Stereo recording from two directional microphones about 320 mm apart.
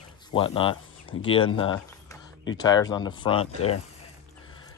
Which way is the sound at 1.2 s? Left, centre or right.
Centre.